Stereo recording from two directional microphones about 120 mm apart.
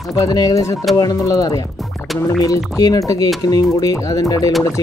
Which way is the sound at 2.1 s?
Centre (ahead or behind).